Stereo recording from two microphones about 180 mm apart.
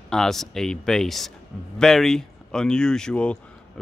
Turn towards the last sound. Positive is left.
turn(degrees=5)  # may be behind; listen again after turning